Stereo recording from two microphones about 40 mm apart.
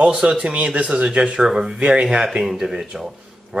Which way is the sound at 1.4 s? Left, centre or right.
Centre.